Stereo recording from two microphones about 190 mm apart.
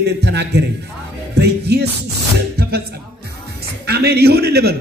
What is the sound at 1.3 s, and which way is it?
Music, 60° right (ahead or behind).